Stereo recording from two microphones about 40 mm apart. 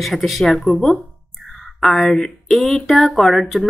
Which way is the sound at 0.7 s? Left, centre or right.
Centre.